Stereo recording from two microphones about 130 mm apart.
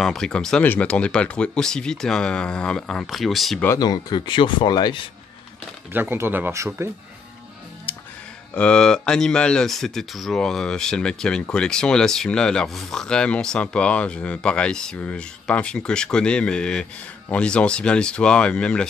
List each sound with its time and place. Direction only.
0.0 s speech: 5° left (ahead or behind)
3.8 s speech: 35° left (ahead or behind)
5.9 s speech: 20° right (ahead or behind)
7.9 s music: 15° left (ahead or behind)
8.5 s speech: 5° left (ahead or behind)